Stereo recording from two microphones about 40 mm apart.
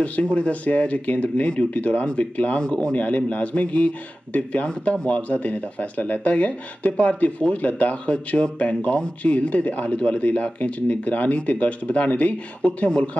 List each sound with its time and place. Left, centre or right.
0.0 s speech: left